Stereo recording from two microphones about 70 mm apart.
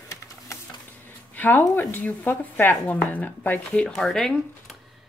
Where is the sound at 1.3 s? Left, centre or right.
Left.